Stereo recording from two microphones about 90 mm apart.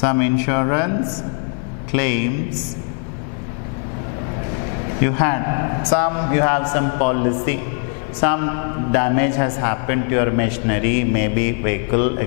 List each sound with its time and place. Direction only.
0.0 s a man's voice: 15° left (ahead or behind)
5.0 s a man's voice: 15° left (ahead or behind)